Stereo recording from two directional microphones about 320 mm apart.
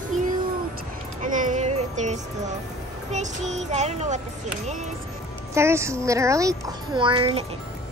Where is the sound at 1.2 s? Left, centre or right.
Right.